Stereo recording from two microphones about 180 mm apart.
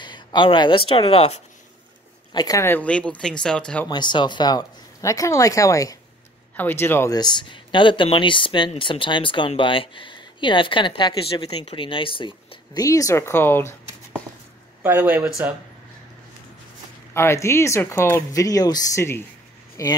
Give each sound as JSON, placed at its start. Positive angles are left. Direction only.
{"t": 0.0, "sound": "speech", "side_deg": 25}
{"t": 2.3, "sound": "speech", "side_deg": 20}
{"t": 3.9, "sound": "speech", "side_deg": 25}
{"t": 14.8, "sound": "speech", "side_deg": -10}
{"t": 17.1, "sound": "speech", "side_deg": 15}